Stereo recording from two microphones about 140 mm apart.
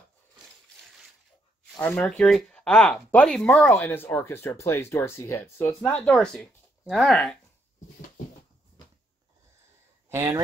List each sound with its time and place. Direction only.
1.8 s speech: 10° left (ahead or behind)
10.0 s speech: 20° right (ahead or behind)